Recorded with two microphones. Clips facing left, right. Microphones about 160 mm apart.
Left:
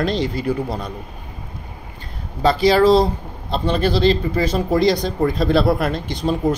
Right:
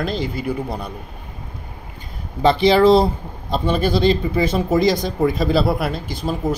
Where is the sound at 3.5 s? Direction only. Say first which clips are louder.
Even; 10° right (ahead or behind).